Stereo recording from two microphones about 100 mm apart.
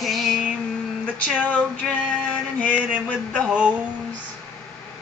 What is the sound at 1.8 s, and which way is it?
Child singing, 5° left (ahead or behind).